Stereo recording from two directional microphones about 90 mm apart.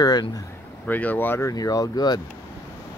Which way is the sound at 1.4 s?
45° left (ahead or behind).